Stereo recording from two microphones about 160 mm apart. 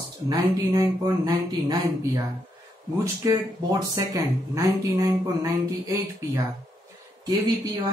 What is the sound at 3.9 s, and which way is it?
Speech, 20° right (ahead or behind).